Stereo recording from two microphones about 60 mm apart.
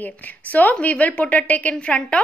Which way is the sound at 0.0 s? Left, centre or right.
Left.